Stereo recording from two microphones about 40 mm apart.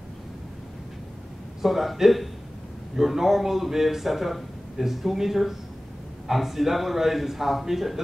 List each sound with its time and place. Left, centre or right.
1.6 s a man's voice: centre